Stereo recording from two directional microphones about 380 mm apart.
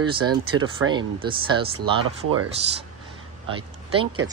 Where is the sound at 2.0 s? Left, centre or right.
Right.